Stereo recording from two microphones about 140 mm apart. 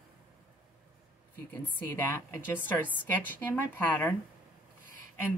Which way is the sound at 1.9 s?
20° left (ahead or behind).